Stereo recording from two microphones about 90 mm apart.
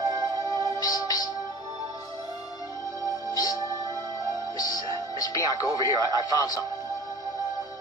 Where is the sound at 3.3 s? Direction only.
45° left (ahead or behind).